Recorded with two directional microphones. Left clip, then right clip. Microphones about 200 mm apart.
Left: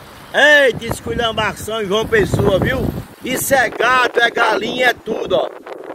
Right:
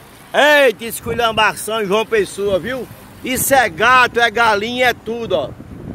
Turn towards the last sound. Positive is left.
turn(degrees=-15)  # may be behind; listen again after turning